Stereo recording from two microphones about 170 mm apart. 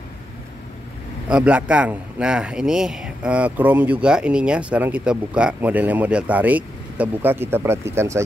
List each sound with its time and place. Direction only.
1.3 s a man's voice: 5° right (ahead or behind)